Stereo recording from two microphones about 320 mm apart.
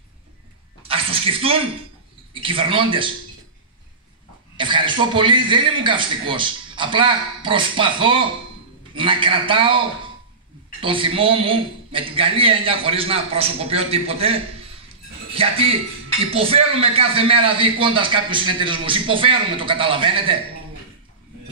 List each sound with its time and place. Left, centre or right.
0.8 s a sound: centre
2.4 s speech: centre
4.6 s speech: centre
15.3 s speech: centre